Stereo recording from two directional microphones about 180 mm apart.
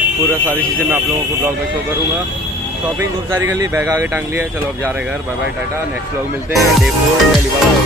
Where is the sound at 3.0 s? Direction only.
15° right (ahead or behind).